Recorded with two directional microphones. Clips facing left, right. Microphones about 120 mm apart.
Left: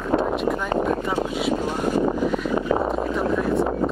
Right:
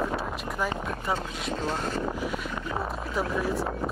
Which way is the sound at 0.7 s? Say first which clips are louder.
Left 11 dB; 45° left (ahead or behind).